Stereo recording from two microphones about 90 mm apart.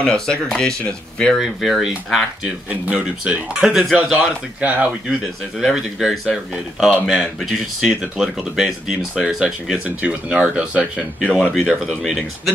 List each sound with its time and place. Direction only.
0.0 s speech: 5° left (ahead or behind)
1.4 s speech: 5° right (ahead or behind)
2.4 s speech: 15° right (ahead or behind)
4.6 s speech: 15° right (ahead or behind)
5.6 s speech: centre (ahead or behind)